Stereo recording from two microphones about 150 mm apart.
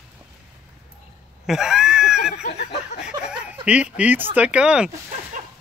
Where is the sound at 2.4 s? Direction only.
45° left (ahead or behind).